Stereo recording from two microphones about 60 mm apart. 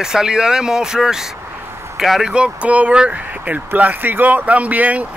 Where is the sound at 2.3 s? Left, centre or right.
Centre.